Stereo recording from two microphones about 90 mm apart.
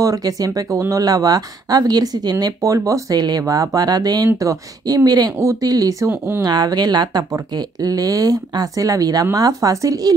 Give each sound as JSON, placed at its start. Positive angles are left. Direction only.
{"t": 0.0, "sound": "speech", "side_deg": -40}
{"t": 6.0, "sound": "speech", "side_deg": -25}
{"t": 6.4, "sound": "speech", "side_deg": -45}